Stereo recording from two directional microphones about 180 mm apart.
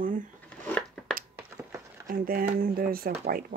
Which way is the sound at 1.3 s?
15° right (ahead or behind).